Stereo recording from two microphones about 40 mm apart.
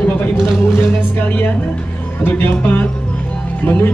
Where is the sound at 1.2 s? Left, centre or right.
Left.